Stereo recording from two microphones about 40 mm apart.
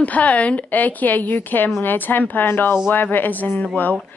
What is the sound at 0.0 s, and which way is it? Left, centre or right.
Speech, left.